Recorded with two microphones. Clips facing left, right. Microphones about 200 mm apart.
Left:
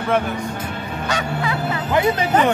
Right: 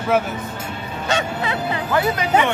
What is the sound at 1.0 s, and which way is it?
Music, 25° right (ahead or behind).